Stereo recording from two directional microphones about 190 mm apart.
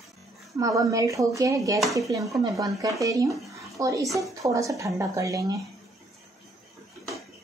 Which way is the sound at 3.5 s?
15° right (ahead or behind).